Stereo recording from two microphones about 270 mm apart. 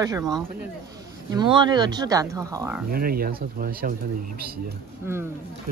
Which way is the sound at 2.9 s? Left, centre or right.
Right.